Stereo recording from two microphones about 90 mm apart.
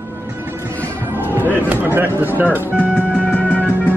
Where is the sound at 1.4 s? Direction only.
20° left (ahead or behind).